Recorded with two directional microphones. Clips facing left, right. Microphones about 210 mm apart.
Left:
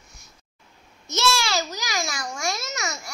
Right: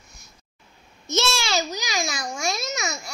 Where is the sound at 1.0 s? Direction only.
25° right (ahead or behind).